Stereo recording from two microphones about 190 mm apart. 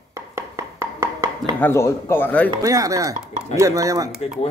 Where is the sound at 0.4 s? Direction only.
15° right (ahead or behind).